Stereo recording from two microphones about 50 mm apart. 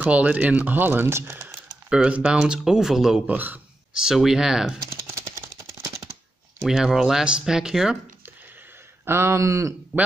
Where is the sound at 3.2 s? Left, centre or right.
Right.